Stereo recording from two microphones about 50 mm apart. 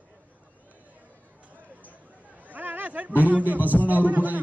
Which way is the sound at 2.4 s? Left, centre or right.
Right.